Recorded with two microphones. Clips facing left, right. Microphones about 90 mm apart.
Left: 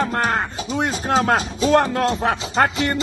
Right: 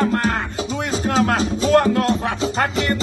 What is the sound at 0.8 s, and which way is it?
Music, 35° left (ahead or behind).